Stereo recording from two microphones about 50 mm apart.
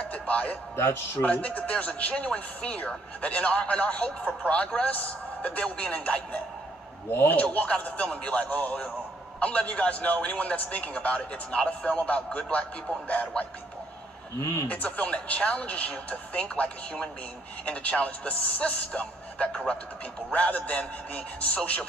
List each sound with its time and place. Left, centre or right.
0.0 s music: left
0.7 s a man's voice: left
1.2 s a man's voice: left
7.1 s a man's voice: left
7.4 s a man's voice: left
14.7 s a man's voice: left